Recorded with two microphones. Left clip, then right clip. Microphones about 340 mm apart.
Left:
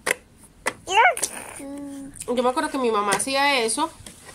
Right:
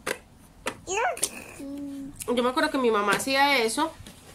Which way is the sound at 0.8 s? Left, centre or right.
Left.